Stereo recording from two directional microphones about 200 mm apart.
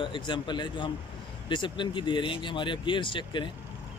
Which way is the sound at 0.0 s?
25° left (ahead or behind).